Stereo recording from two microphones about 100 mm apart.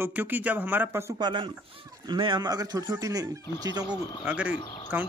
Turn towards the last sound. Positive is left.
turn(degrees=50)  # may be behind; listen again after turning